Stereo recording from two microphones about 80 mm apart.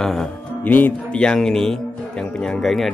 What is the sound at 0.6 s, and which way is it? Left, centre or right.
Speech, left.